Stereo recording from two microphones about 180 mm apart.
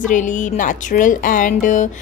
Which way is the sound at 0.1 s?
45° left (ahead or behind).